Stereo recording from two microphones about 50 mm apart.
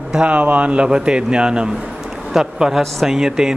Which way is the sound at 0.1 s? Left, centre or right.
Right.